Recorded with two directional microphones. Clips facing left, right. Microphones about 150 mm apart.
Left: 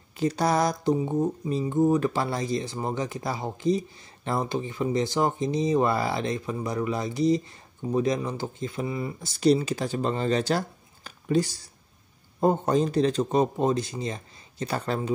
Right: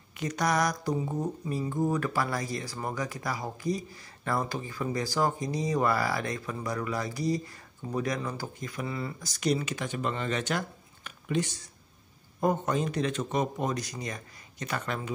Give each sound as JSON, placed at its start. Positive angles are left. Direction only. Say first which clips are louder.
{"t": 0.2, "sound": "speech", "louder": "left 4 dB", "side_deg": 30}
{"t": 11.1, "sound": "a sound", "louder": "left 6 dB", "side_deg": 35}
{"t": 12.4, "sound": "a man's voice", "louder": "left 5 dB", "side_deg": 30}